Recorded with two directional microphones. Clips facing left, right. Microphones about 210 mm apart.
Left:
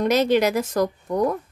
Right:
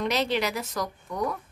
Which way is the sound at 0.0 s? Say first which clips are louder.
Left 8 dB; 45° left (ahead or behind).